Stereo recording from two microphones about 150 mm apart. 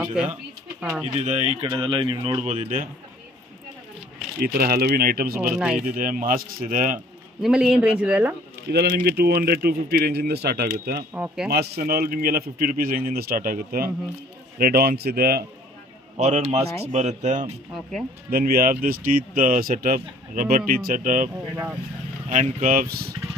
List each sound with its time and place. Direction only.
0.0 s speech: 10° right (ahead or behind)
1.0 s speech: 50° right (ahead or behind)
1.7 s speech: 30° right (ahead or behind)
2.4 s speech: 50° right (ahead or behind)
4.4 s a man's voice: 85° right
5.5 s speech: 5° right (ahead or behind)
5.9 s speech: 65° right (ahead or behind)
7.4 s speech: 5° right (ahead or behind)
8.7 s speech: 90° right
11.1 s speech: 10° right (ahead or behind)
11.4 s a man's voice: 90° right
16.2 s speech: 50° right (ahead or behind)
18.3 s speech: 80° right; by 21.3 s 60° right (ahead or behind)
22.3 s speech: 55° right (ahead or behind); by 23.1 s 90° right